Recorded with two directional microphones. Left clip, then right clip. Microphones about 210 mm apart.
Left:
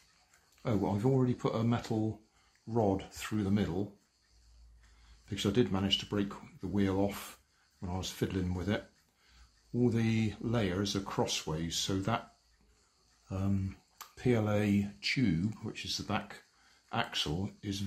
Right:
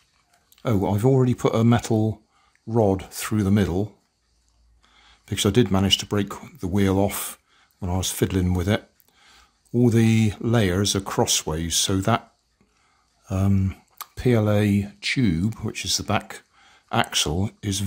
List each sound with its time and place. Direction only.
0.6 s speech: 55° right (ahead or behind)
2.7 s speech: 45° right (ahead or behind)
5.2 s speech: 60° right (ahead or behind)
13.3 s speech: 55° right (ahead or behind)